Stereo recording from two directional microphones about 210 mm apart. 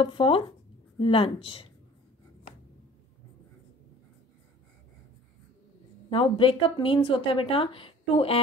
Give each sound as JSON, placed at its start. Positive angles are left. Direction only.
{"t": 0.0, "sound": "speech", "side_deg": 25}
{"t": 6.0, "sound": "speech", "side_deg": 25}